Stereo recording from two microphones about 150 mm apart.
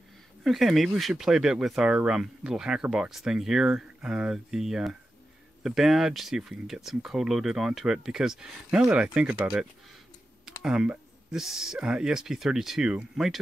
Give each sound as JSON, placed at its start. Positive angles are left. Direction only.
{"t": 0.4, "sound": "speech", "side_deg": 0}